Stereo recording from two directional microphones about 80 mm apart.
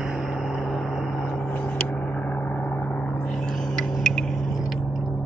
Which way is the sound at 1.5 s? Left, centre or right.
Centre.